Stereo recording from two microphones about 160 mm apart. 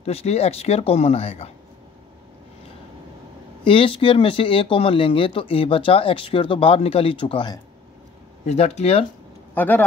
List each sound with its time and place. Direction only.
0.0 s speech: 40° left (ahead or behind)
3.6 s speech: 35° left (ahead or behind)
8.5 s speech: 40° left (ahead or behind)
9.5 s speech: 10° left (ahead or behind)